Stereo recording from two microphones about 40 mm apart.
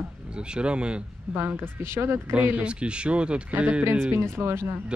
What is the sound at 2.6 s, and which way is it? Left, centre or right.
Speech, right.